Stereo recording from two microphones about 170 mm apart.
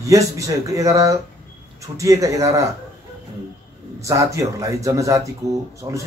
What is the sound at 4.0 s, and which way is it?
Speech, 20° right (ahead or behind).